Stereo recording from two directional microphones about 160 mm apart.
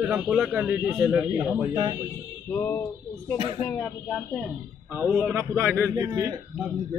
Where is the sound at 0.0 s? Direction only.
5° right (ahead or behind).